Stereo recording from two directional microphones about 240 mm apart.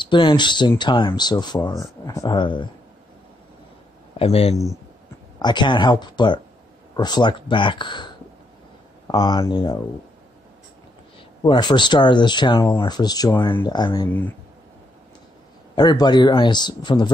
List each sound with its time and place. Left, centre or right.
0.0 s speech: centre
4.2 s speech: left
11.4 s speech: centre
15.7 s speech: centre